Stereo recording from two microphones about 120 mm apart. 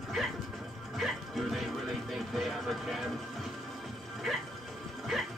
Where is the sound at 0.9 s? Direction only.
Centre (ahead or behind).